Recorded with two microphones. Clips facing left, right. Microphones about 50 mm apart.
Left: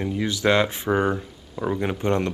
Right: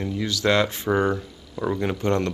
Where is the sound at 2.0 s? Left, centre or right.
Left.